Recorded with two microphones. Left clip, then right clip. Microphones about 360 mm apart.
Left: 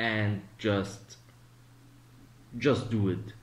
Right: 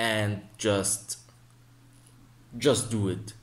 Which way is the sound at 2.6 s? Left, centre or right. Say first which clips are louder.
Right 3 dB; centre.